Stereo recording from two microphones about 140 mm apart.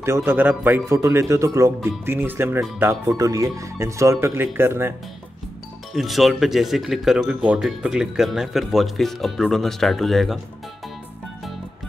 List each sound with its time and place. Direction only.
0.0 s speech: 20° right (ahead or behind)
5.9 s speech: centre (ahead or behind)